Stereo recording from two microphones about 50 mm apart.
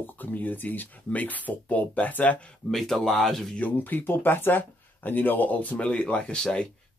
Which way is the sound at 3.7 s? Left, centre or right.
Left.